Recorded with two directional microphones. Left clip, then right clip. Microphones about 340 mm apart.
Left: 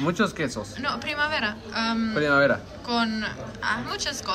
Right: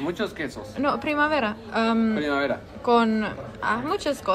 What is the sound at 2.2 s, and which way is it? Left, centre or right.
Speech, left.